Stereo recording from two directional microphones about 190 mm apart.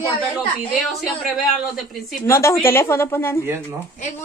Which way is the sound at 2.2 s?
15° left (ahead or behind).